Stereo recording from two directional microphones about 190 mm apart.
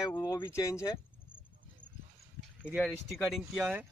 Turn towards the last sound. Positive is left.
turn(degrees=-5)  # may be behind; listen again after turning